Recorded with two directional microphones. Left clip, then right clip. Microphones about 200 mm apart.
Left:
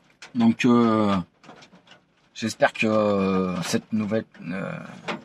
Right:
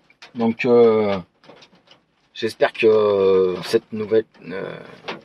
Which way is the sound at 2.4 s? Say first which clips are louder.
Right 5 dB; centre (ahead or behind).